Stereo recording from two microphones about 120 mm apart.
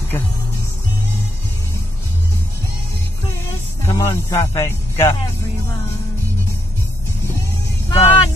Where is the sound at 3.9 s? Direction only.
25° left (ahead or behind).